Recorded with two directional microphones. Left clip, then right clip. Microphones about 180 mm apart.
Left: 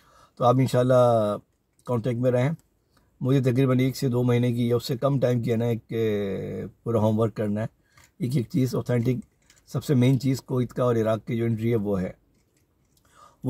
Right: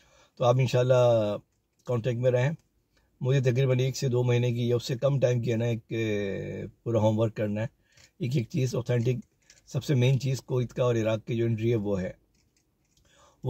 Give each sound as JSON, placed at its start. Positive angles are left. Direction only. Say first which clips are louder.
{"t": 0.1, "sound": "speech", "louder": "left 3 dB", "side_deg": 35}